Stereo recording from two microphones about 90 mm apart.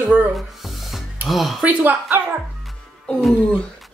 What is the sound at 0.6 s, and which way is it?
Music, centre (ahead or behind).